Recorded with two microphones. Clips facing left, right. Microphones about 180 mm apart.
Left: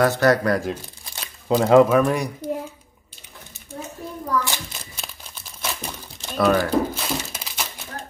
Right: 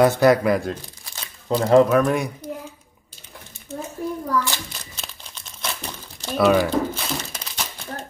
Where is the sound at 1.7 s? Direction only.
Centre (ahead or behind).